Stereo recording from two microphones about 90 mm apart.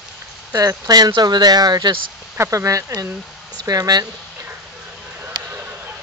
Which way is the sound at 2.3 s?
30° right (ahead or behind).